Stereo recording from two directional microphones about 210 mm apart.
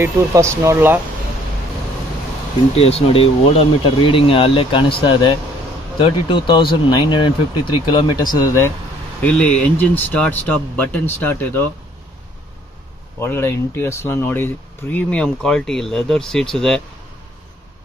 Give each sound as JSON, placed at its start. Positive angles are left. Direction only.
{"t": 0.0, "sound": "speech", "side_deg": -15}
{"t": 2.7, "sound": "speech", "side_deg": 30}
{"t": 5.9, "sound": "speech", "side_deg": 25}
{"t": 13.2, "sound": "speech", "side_deg": 10}